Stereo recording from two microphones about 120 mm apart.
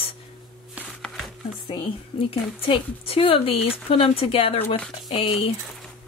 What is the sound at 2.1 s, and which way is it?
Speech, 45° left (ahead or behind).